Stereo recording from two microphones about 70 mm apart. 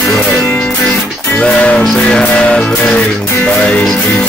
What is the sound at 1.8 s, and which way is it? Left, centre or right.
Music, centre.